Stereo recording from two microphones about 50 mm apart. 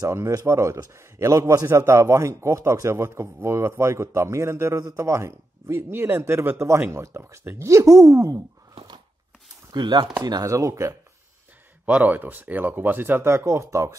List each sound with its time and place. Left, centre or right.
0.1 s a man's voice: right
7.5 s speech: right
10.4 s speech: right
11.8 s speech: right
13.5 s speech: right